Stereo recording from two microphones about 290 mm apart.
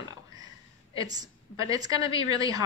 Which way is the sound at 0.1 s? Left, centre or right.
Centre.